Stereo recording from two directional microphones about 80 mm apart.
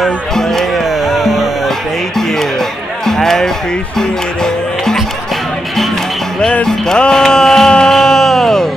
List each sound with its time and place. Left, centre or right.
0.0 s music: centre
3.1 s a sound: centre
4.0 s music: centre
6.4 s music: centre